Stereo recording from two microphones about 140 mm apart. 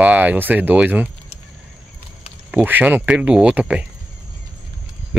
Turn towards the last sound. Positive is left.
turn(degrees=-10)  # may be behind; listen again after turning